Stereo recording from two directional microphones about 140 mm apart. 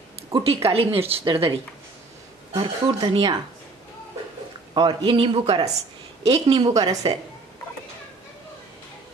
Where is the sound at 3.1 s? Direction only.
40° right (ahead or behind).